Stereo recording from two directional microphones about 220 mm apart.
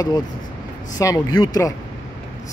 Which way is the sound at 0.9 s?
15° left (ahead or behind).